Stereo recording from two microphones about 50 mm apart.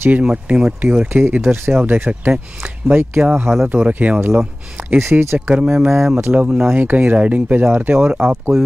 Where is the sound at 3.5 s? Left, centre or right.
Right.